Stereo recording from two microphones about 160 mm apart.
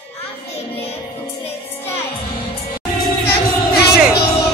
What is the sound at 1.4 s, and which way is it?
Music, 15° left (ahead or behind).